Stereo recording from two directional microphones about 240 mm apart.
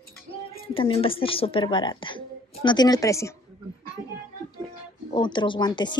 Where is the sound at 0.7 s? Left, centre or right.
Left.